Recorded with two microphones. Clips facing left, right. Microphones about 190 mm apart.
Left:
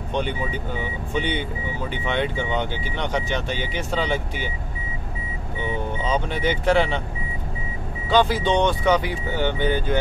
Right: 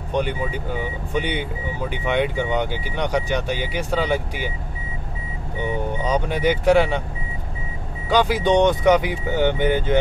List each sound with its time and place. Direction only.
0.1 s speech: 10° right (ahead or behind)
5.6 s speech: 15° right (ahead or behind)
8.1 s speech: 15° right (ahead or behind)